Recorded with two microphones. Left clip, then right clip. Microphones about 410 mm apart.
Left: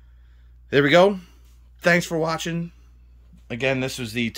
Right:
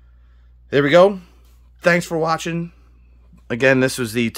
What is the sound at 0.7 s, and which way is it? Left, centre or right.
Speech, centre.